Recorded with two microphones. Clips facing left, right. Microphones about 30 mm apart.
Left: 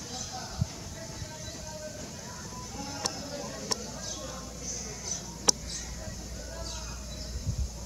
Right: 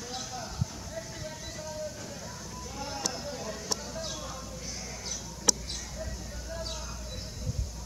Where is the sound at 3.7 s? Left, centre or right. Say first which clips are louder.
Right 2 dB; centre.